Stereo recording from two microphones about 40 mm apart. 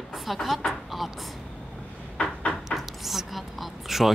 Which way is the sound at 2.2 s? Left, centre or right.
Left.